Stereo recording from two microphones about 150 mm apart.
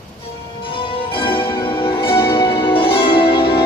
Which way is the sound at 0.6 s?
35° left (ahead or behind).